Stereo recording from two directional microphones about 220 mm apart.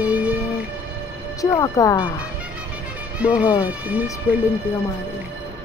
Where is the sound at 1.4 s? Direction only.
15° left (ahead or behind).